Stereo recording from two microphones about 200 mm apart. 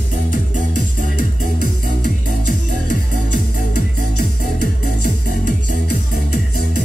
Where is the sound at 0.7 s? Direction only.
40° right (ahead or behind).